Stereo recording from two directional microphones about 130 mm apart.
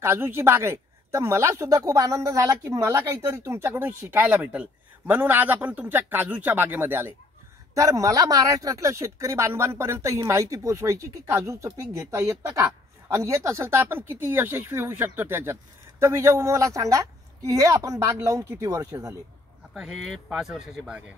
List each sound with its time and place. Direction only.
0.0 s speech: 20° right (ahead or behind)
19.7 s speech: 5° right (ahead or behind)